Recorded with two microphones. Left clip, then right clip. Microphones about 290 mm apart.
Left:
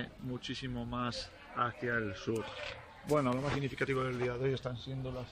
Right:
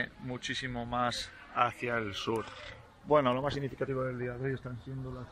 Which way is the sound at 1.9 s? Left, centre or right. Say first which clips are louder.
Right 1 dB; right.